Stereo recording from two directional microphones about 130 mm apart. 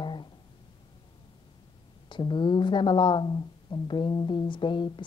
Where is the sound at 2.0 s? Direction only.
35° left (ahead or behind).